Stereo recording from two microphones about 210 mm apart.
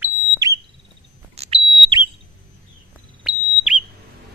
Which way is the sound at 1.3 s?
30° right (ahead or behind).